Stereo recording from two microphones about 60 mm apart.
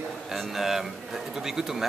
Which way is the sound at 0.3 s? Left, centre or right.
Centre.